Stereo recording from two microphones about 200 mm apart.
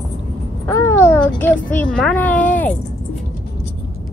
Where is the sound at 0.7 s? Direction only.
10° left (ahead or behind).